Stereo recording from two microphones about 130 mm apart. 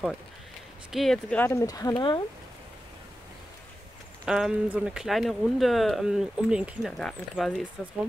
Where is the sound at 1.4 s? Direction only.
20° left (ahead or behind).